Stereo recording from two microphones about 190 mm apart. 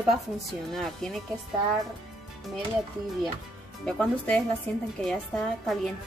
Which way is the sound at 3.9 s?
5° left (ahead or behind).